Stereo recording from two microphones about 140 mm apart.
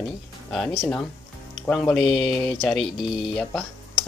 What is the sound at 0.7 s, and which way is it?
Speech, 15° left (ahead or behind).